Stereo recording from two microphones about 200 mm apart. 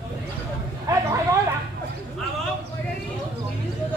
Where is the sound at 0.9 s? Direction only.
15° right (ahead or behind).